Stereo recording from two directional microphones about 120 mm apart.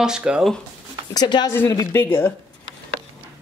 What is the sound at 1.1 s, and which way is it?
Speech, 35° left (ahead or behind).